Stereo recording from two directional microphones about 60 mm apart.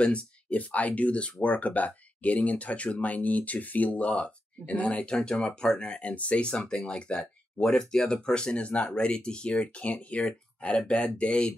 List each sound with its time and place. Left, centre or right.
0.0 s speech: left